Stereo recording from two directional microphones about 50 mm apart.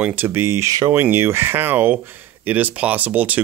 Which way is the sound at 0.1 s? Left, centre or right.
Right.